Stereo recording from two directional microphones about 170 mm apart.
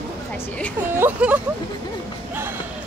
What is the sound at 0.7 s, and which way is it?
Speech, 15° right (ahead or behind).